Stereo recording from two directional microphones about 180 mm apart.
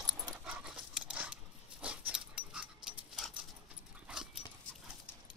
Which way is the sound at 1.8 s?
5° right (ahead or behind).